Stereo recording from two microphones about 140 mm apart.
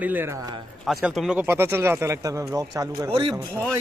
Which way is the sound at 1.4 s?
15° right (ahead or behind).